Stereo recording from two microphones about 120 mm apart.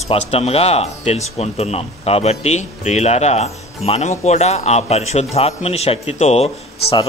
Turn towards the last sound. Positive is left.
turn(degrees=60)  # may be behind; listen again after turning